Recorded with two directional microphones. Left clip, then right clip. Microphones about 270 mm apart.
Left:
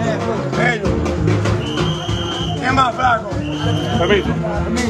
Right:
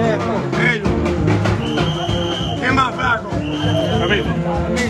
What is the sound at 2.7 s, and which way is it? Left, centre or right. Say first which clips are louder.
Hubbub: left 2 dB; left.